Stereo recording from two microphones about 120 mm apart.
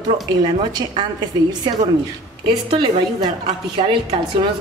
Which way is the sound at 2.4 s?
40° right (ahead or behind).